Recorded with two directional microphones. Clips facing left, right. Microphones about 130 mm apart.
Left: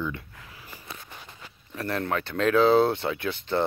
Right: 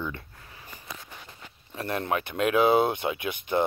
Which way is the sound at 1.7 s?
20° right (ahead or behind).